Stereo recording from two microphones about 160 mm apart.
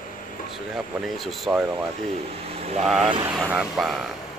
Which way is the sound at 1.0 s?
Centre (ahead or behind).